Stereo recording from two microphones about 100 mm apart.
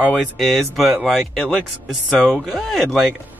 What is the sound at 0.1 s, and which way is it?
Speech, 5° left (ahead or behind).